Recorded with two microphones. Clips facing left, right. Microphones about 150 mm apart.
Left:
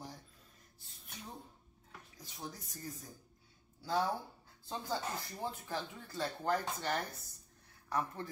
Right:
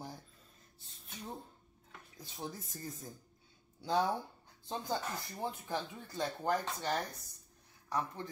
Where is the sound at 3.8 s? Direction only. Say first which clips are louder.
Right 2 dB; 20° right (ahead or behind).